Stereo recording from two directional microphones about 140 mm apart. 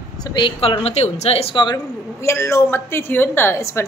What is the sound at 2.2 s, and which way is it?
A woman's voice, 20° left (ahead or behind).